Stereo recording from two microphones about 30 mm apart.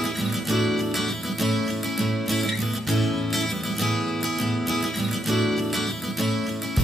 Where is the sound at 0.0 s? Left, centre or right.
Centre.